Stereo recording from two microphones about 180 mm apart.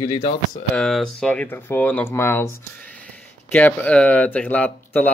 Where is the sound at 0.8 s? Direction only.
5° left (ahead or behind).